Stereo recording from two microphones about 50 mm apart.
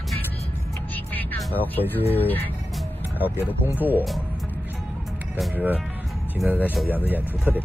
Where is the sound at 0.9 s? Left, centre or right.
Left.